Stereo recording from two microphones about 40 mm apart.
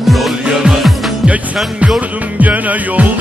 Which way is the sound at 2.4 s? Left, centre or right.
Right.